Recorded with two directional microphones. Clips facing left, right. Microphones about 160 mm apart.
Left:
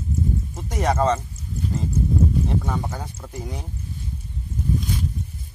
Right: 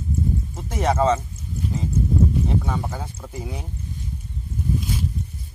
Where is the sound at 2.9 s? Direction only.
5° right (ahead or behind).